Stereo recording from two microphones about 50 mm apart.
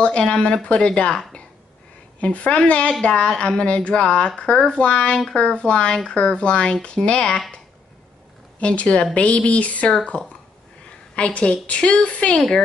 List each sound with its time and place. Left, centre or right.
0.0 s speech: left
8.5 s speech: left
12.4 s speech: centre